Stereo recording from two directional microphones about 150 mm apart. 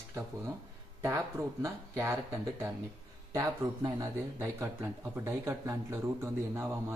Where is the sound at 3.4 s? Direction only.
20° right (ahead or behind).